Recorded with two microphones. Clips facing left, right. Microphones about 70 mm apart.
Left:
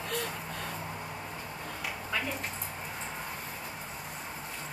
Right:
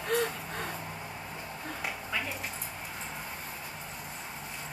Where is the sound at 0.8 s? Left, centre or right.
Centre.